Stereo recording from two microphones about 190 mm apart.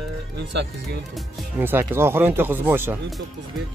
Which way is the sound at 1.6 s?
10° right (ahead or behind).